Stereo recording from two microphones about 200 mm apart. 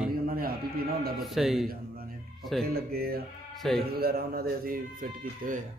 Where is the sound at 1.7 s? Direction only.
50° right (ahead or behind).